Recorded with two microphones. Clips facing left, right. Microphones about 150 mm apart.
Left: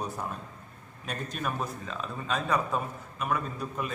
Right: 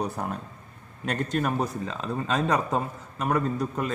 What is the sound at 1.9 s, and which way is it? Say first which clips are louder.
A man's voice: right 5 dB; 85° right.